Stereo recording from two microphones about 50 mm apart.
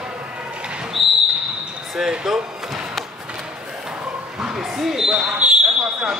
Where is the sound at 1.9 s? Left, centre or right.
Centre.